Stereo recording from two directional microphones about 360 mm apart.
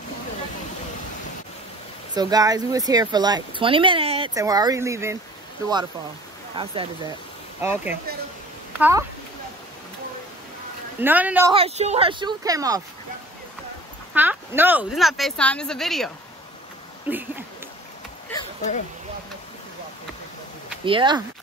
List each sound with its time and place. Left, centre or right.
2.1 s speech: centre
6.5 s speech: centre
11.0 s speech: centre
14.1 s a woman's voice: centre
18.3 s a sound: centre
20.8 s speech: centre